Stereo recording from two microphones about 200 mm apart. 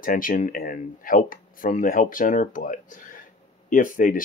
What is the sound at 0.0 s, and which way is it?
Speech, 45° left (ahead or behind).